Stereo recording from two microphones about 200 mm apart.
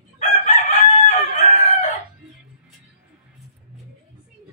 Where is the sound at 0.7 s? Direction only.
35° left (ahead or behind).